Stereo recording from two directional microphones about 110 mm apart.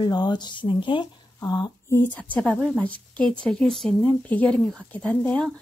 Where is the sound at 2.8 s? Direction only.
10° left (ahead or behind).